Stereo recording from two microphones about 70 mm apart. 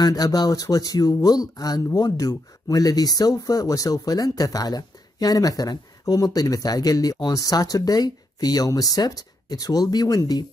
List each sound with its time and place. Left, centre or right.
0.0 s speech: left
7.3 s speech: left